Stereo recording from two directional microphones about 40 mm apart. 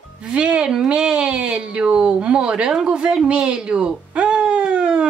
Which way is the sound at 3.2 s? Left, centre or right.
Right.